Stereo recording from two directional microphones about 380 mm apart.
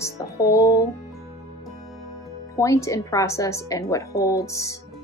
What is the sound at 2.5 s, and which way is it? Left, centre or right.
Speech, centre.